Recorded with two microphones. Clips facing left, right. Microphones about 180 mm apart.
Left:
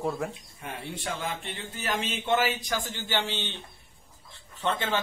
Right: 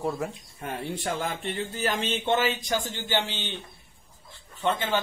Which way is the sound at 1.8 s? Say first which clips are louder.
Right 3 dB; 25° right (ahead or behind).